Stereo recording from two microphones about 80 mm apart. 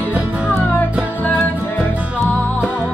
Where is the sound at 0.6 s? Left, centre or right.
Left.